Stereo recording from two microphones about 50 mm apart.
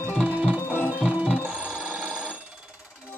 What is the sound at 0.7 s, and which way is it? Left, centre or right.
Music, right.